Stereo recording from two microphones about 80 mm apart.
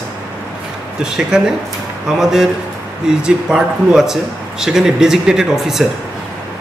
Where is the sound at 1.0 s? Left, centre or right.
Centre.